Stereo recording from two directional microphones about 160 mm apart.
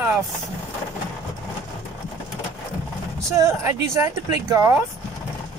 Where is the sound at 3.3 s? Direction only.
20° right (ahead or behind).